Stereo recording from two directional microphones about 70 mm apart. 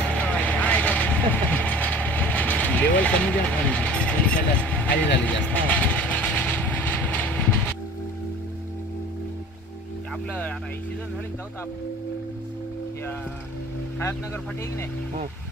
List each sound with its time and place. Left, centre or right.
0.2 s vehicle: centre